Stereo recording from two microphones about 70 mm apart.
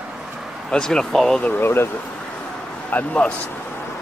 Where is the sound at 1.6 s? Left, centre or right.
Left.